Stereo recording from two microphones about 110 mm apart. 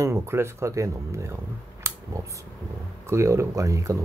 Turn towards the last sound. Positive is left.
turn(degrees=-30)  # may be behind; listen again after turning